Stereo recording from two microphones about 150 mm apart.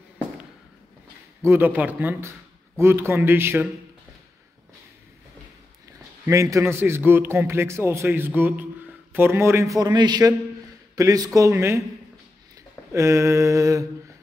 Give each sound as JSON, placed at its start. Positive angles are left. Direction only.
{"t": 1.4, "sound": "a man's voice", "side_deg": -15}
{"t": 6.2, "sound": "a man's voice", "side_deg": -20}
{"t": 12.9, "sound": "a man's voice", "side_deg": -20}